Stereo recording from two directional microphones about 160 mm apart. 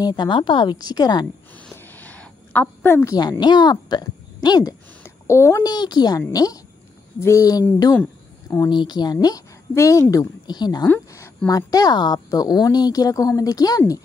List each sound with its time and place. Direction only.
0.0 s a woman's voice: 25° left (ahead or behind)
1.6 s a sound: 10° left (ahead or behind)
3.2 s a woman's voice: 25° left (ahead or behind)
10.9 s a woman's voice: 15° left (ahead or behind)